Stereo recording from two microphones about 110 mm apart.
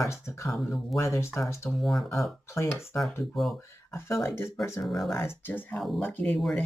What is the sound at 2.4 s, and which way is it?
Speech, 25° left (ahead or behind).